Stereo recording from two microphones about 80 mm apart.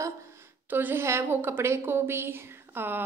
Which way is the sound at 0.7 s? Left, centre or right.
Right.